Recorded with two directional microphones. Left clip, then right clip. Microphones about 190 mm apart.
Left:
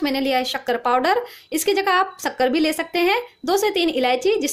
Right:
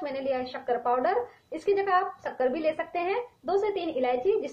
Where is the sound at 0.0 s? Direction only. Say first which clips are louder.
Left 9 dB; 55° left (ahead or behind).